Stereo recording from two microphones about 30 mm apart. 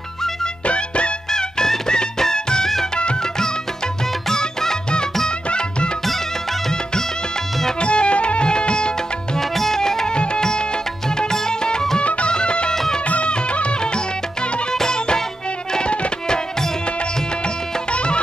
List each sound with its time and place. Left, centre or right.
0.7 s music: left
1.9 s music: left
4.3 s music: centre
5.5 s music: left
7.8 s music: left
9.4 s music: centre
10.1 s music: left
11.1 s music: left
12.0 s music: left
12.4 s music: left
14.7 s music: left
15.8 s music: left
17.9 s music: left